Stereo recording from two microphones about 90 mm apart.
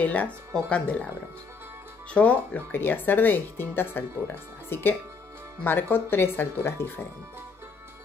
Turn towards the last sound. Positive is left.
turn(degrees=25)  # may be behind; listen again after turning